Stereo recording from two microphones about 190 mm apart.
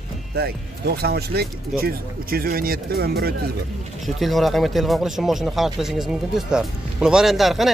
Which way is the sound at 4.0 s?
Centre (ahead or behind).